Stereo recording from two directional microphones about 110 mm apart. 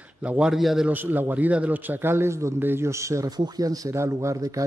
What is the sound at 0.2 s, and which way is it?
Speech, 10° right (ahead or behind).